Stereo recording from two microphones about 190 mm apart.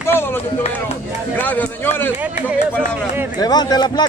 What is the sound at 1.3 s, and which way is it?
Speech, 10° left (ahead or behind).